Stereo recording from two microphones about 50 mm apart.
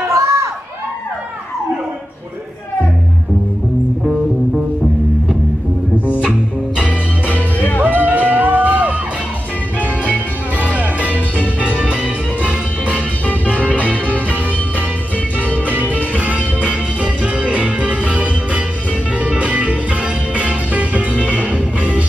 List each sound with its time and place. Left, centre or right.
0.1 s crowd: right
7.5 s music: left
7.8 s music: right
10.0 s music: right
12.8 s music: left
15.4 s music: left
16.6 s music: right